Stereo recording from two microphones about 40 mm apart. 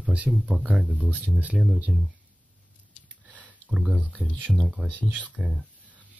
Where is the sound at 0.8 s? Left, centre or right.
Right.